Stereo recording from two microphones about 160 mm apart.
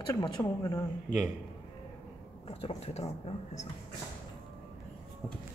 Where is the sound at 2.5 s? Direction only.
40° left (ahead or behind).